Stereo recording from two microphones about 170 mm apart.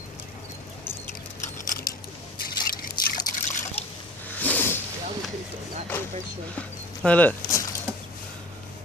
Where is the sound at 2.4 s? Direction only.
60° left (ahead or behind).